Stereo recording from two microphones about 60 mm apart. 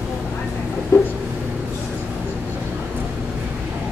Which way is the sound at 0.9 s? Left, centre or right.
Left.